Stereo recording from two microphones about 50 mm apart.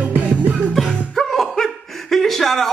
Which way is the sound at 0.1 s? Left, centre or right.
Right.